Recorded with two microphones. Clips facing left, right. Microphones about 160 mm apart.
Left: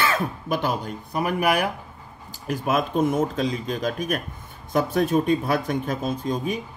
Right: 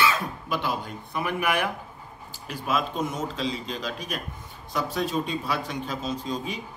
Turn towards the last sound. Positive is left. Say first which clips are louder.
# left 5 dB
turn(degrees=50)  # may be behind; listen again after turning